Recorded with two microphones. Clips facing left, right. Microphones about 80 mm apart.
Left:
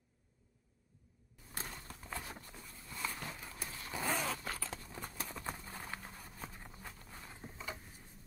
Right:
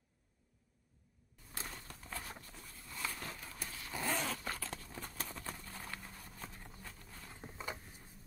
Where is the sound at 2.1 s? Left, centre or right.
Centre.